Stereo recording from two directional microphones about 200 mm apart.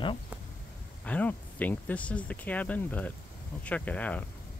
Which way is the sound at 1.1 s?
10° left (ahead or behind).